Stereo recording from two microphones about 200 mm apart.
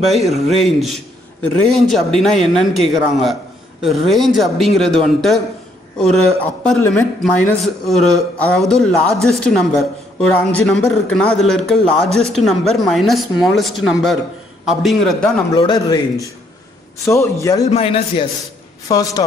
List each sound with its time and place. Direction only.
0.0 s a man's voice: centre (ahead or behind)
15.5 s a man's voice: 20° left (ahead or behind)
17.6 s a man's voice: 30° left (ahead or behind)
18.9 s a man's voice: 20° left (ahead or behind)